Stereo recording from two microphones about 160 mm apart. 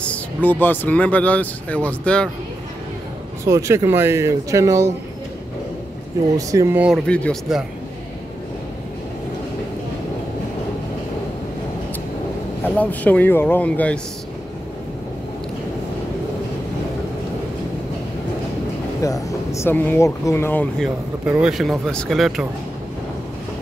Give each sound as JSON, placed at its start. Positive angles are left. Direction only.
{"t": 0.0, "sound": "speech", "side_deg": 10}
{"t": 3.4, "sound": "speech", "side_deg": -20}
{"t": 6.3, "sound": "speech", "side_deg": -20}
{"t": 7.1, "sound": "speech", "side_deg": 5}
{"t": 7.5, "sound": "speech", "side_deg": -5}
{"t": 12.6, "sound": "speech", "side_deg": 10}
{"t": 18.9, "sound": "speech", "side_deg": 20}
{"t": 21.3, "sound": "speech", "side_deg": -5}